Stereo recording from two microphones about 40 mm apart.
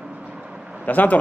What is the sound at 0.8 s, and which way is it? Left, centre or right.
Speech, left.